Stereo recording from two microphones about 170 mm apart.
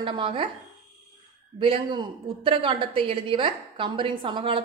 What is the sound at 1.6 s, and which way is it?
A woman's voice, 30° right (ahead or behind).